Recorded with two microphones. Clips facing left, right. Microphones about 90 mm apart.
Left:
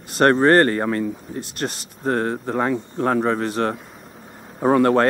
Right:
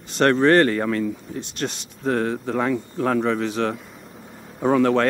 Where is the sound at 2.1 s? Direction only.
30° left (ahead or behind).